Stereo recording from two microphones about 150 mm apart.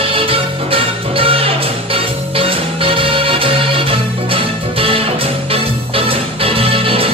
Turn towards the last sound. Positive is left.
turn(degrees=-40)  # may be behind; listen again after turning